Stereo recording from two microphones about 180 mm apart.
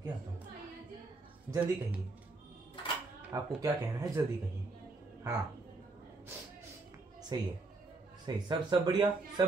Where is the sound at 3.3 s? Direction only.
15° right (ahead or behind).